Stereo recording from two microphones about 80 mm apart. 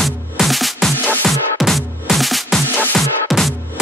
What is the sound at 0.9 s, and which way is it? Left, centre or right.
Music, left.